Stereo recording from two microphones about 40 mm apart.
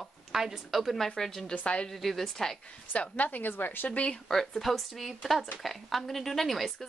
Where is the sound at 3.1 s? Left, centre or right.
Left.